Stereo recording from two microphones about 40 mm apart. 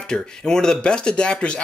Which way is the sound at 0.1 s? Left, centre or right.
Centre.